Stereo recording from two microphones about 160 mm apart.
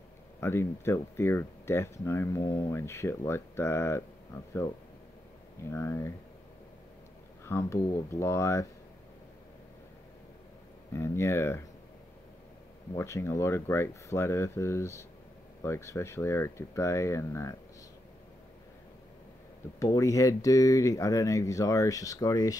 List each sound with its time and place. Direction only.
0.4 s speech: 15° left (ahead or behind)
5.7 s speech: 20° left (ahead or behind)
7.4 s speech: 15° left (ahead or behind)
10.9 s speech: 15° left (ahead or behind)
12.9 s speech: 20° left (ahead or behind)
19.8 s speech: 20° left (ahead or behind)